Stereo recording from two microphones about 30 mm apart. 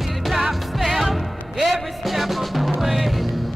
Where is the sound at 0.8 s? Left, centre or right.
Centre.